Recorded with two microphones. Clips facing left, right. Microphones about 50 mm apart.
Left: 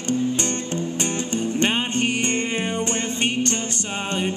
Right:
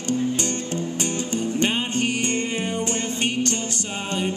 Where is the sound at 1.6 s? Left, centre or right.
Left.